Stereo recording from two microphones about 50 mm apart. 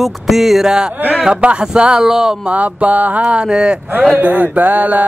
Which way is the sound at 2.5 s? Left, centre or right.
Right.